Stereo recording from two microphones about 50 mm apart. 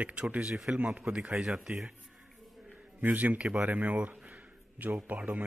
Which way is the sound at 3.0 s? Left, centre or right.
Right.